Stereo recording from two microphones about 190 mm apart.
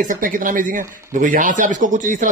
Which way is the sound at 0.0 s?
45° right (ahead or behind).